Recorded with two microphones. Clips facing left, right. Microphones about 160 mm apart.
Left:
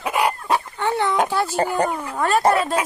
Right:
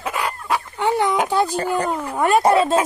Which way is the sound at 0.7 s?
15° right (ahead or behind).